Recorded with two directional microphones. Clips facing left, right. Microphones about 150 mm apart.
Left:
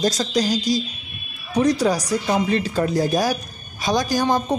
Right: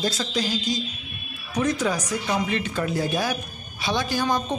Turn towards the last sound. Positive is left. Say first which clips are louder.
# left 4 dB
turn(degrees=40)  # may be behind; listen again after turning